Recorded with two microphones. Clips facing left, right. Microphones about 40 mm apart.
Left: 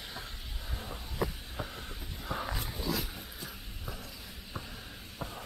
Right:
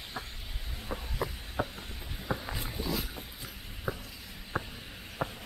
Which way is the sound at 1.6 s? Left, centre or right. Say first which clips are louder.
Right 6 dB; right.